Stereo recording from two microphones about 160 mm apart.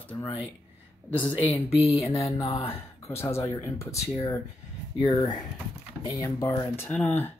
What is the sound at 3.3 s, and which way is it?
Speech, 15° left (ahead or behind).